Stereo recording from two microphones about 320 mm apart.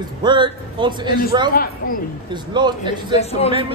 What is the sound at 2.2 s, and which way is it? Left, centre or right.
Speech, centre.